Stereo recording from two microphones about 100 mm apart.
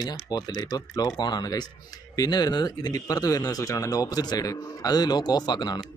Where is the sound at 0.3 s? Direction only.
40° left (ahead or behind).